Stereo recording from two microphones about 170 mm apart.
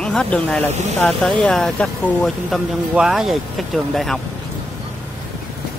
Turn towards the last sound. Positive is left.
turn(degrees=0)  # may be behind; listen again after turning